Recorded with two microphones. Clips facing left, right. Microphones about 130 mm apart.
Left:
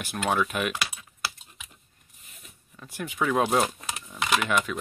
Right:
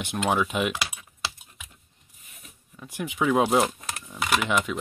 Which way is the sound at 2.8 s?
15° right (ahead or behind).